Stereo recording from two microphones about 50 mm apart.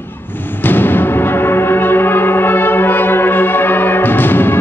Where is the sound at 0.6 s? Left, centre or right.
Left.